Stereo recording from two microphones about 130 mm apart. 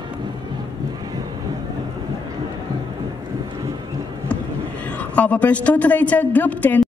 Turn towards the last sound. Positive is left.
turn(degrees=10)  # may be behind; listen again after turning